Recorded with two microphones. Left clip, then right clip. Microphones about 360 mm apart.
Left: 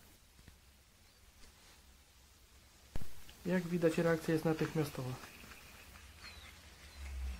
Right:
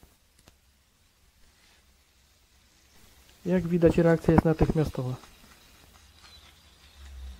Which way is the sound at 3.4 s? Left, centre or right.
Centre.